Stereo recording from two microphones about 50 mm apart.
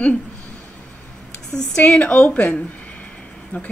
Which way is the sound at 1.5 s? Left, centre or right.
Centre.